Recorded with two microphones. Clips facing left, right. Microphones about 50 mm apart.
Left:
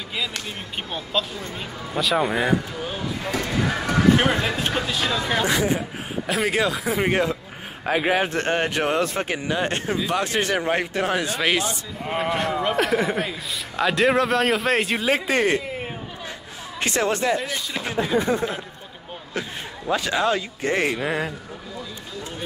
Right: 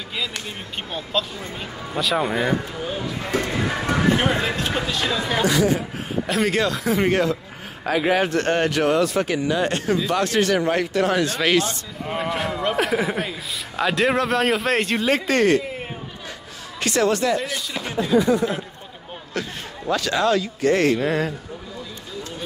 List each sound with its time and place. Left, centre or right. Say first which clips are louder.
0.1 s a man's voice: even; centre
3.3 s speech: right 5 dB; right
4.2 s speech: even; left
4.7 s a man's voice: right 1 dB; centre
5.4 s speech: right 5 dB; centre
6.2 s speech: right 1 dB; centre
7.1 s speech: right 2 dB; centre
9.9 s a man's voice: right 3 dB; centre
15.6 s a sound: even; centre
16.8 s speech: right 2 dB; left
17.4 s speech: right 1 dB; centre
17.9 s speech: right 4 dB; left
19.4 s speech: right 1 dB; centre